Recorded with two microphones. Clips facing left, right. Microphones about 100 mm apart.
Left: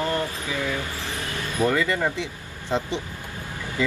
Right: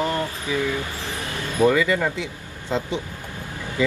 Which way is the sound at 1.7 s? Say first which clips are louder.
Right 2 dB; 20° left (ahead or behind).